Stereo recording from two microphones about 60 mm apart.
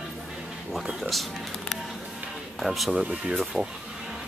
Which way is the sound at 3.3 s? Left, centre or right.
Centre.